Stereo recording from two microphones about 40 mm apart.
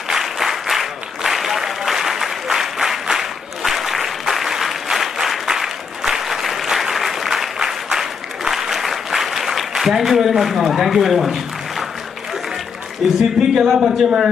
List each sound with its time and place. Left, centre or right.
0.1 s applause: centre
13.0 s speech: centre
13.4 s a man's voice: centre